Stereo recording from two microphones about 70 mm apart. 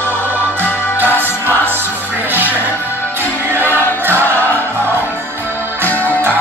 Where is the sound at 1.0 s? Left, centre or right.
Right.